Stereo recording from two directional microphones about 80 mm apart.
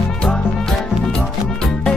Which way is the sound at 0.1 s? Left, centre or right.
Centre.